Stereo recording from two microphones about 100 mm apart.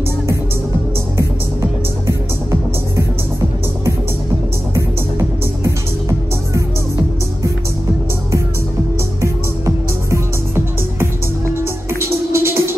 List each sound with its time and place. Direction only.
1.1 s music: 30° right (ahead or behind)
5.6 s music: 30° right (ahead or behind)
10.1 s music: 25° right (ahead or behind)